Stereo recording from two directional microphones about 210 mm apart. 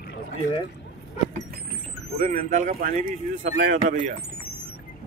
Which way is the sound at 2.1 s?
35° right (ahead or behind).